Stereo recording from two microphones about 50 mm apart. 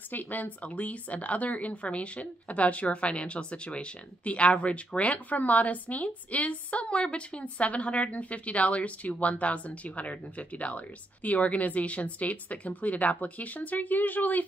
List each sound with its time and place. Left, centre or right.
0.1 s speech: left